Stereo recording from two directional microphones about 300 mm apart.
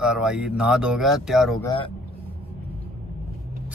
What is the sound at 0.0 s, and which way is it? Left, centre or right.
Speech, centre.